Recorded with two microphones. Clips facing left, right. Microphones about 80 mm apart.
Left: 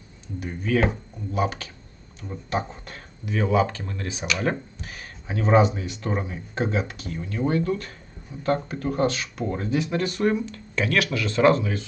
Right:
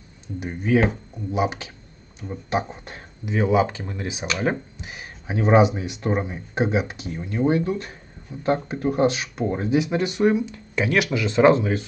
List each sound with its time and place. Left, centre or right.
0.4 s speech: right
0.7 s speech: centre